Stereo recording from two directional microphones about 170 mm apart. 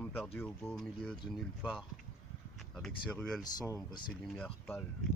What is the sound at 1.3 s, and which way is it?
Speech, 5° right (ahead or behind).